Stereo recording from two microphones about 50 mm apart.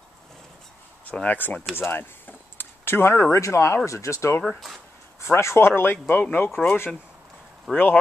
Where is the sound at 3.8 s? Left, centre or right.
Left.